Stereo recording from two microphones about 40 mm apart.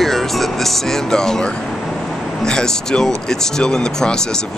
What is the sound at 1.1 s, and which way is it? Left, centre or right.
Speech, centre.